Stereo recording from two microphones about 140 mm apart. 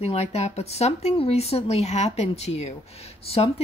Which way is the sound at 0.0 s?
45° left (ahead or behind).